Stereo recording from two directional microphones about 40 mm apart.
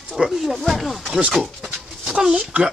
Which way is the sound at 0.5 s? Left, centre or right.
Centre.